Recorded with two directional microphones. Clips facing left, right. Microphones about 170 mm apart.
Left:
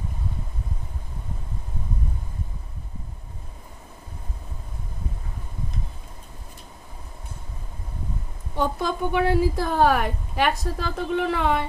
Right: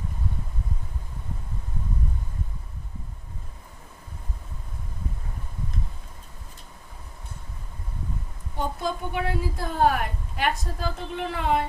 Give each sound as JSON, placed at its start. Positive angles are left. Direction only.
{"t": 8.5, "sound": "a woman's voice", "side_deg": 90}